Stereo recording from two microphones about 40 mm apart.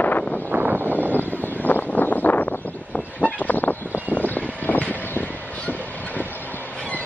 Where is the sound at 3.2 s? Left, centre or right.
Left.